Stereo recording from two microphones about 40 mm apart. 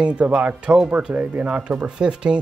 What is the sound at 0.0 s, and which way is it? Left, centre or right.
Speech, right.